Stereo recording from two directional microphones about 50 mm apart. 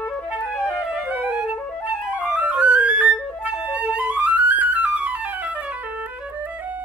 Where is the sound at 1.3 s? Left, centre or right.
Right.